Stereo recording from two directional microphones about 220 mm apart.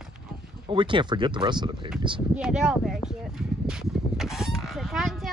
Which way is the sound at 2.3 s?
5° right (ahead or behind).